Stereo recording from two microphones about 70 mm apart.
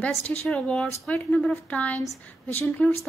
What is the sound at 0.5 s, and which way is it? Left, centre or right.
A woman's voice, centre.